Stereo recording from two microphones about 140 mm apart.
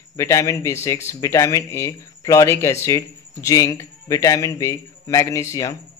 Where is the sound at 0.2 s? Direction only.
20° left (ahead or behind).